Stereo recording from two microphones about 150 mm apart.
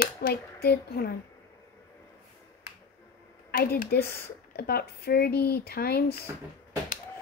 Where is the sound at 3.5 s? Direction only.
75° left (ahead or behind); by 6.2 s 90° left.